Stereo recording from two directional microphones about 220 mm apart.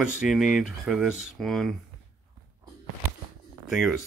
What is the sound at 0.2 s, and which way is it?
Speech, centre (ahead or behind).